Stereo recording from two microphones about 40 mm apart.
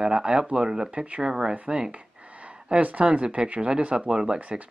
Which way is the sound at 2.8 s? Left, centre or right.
Right.